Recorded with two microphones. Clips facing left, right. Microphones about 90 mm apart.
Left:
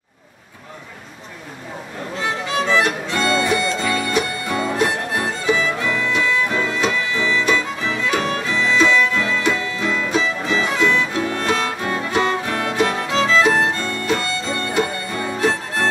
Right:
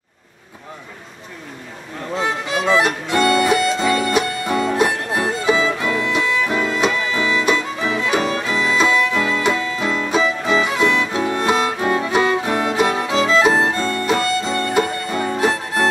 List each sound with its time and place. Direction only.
2.7 s music: 20° right (ahead or behind)
8.5 s music: 10° right (ahead or behind)